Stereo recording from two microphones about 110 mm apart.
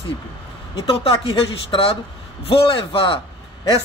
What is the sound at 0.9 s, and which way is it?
A man's voice, 55° left (ahead or behind).